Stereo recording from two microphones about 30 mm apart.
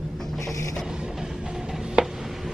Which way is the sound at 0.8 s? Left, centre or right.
Right.